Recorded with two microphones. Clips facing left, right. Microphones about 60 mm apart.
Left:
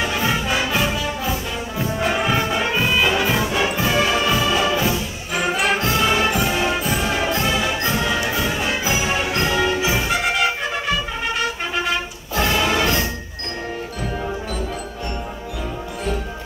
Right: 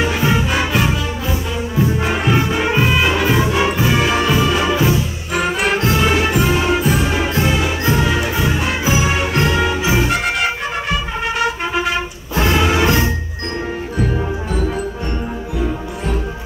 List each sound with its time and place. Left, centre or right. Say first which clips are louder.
0.0 s music: right 4 dB; centre
12.5 s music: right 5 dB; centre